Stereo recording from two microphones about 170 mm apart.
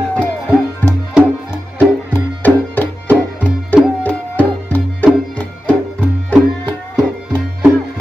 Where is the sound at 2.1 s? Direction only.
10° left (ahead or behind).